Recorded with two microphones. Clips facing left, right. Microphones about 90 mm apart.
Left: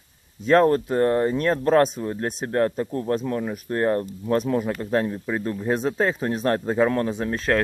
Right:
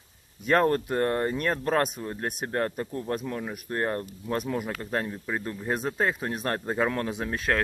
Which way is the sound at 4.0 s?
30° left (ahead or behind).